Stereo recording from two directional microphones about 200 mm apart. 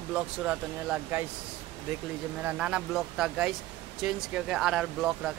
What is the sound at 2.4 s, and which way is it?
Speech, 5° right (ahead or behind).